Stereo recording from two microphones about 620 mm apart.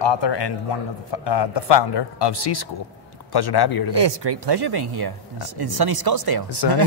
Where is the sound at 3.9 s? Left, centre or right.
Right.